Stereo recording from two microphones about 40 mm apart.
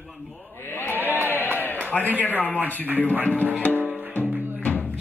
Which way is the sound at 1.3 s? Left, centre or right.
Right.